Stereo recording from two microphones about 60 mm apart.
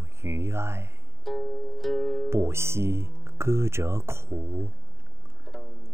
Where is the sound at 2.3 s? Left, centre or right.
Right.